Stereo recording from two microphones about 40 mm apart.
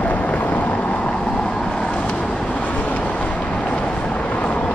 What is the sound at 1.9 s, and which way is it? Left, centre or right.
Vehicle, left.